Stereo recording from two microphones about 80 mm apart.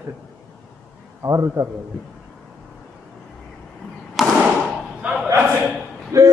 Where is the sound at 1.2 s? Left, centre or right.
Right.